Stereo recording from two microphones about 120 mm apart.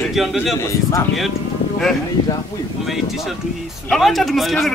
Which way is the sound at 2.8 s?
Centre (ahead or behind).